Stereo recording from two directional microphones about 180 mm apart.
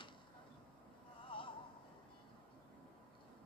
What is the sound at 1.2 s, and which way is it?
Music, 30° left (ahead or behind).